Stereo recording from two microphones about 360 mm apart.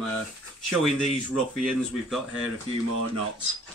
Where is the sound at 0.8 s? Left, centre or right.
Centre.